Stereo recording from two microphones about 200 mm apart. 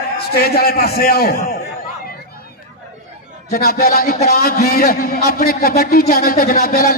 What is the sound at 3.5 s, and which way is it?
A man's voice, 50° left (ahead or behind).